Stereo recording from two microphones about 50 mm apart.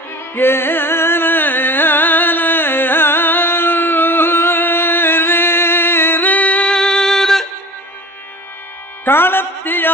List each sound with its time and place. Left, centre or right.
0.3 s carnatic music: left
6.7 s music: centre
9.0 s music: left